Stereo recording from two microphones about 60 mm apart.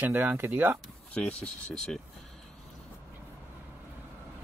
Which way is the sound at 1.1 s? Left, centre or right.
Centre.